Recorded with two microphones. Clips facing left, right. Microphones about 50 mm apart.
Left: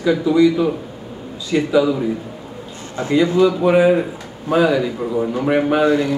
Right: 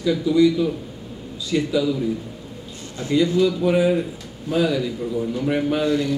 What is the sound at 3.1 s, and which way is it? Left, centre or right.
Speech, left.